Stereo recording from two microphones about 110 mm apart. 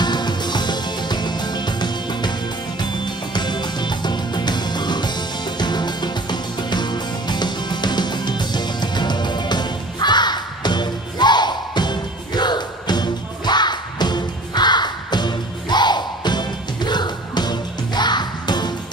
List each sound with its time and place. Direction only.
0.0 s music: 40° left (ahead or behind)
3.3 s music: 40° left (ahead or behind)